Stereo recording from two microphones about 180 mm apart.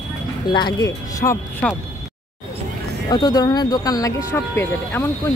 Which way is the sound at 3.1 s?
20° left (ahead or behind).